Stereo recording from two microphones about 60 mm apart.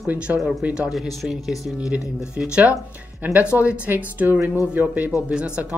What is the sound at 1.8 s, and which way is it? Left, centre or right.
Speech, centre.